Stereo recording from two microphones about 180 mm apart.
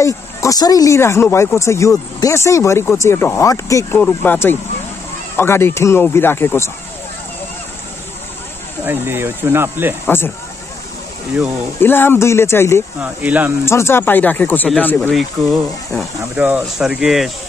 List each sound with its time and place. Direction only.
0.0 s speech: 15° left (ahead or behind)
8.8 s speech: 10° right (ahead or behind)
10.0 s speech: 10° left (ahead or behind)
11.8 s speech: 10° left (ahead or behind)
13.0 s speech: 10° right (ahead or behind)
13.7 s speech: 15° left (ahead or behind)
16.3 s speech: 10° right (ahead or behind)